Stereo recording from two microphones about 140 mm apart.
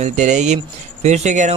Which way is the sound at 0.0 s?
55° right (ahead or behind).